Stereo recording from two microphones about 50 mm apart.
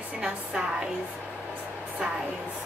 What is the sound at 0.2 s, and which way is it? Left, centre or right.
Speech, centre.